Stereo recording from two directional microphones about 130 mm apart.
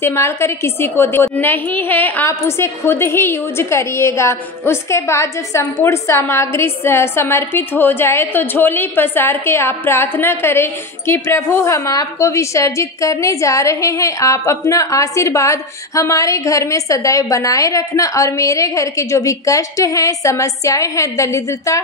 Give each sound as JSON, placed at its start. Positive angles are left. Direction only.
{"t": 0.0, "sound": "a woman's voice", "side_deg": 20}